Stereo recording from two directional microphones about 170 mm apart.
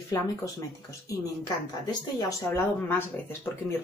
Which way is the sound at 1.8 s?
20° left (ahead or behind).